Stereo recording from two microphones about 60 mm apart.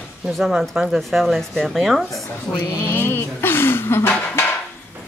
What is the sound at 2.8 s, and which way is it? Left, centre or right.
Speech, left.